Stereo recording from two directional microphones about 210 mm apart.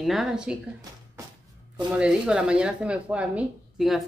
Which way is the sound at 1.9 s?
5° right (ahead or behind).